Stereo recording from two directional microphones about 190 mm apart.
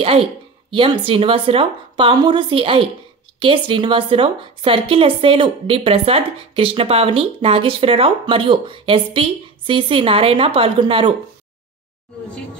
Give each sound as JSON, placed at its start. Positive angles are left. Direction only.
{"t": 0.0, "sound": "a woman's voice", "side_deg": -30}